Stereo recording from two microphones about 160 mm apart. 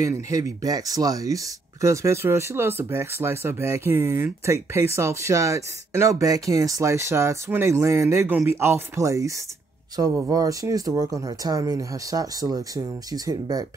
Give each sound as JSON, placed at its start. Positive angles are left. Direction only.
{"t": 0.0, "sound": "speech", "side_deg": -25}